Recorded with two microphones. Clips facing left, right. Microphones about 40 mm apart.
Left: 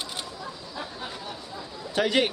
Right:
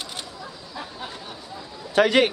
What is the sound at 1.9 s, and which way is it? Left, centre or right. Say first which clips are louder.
Speech: right 6 dB; right.